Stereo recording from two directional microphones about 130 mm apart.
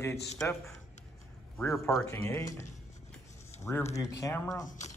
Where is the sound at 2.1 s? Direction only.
25° left (ahead or behind).